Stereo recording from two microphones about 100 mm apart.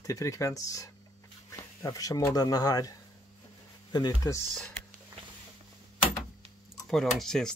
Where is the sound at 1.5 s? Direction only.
35° left (ahead or behind).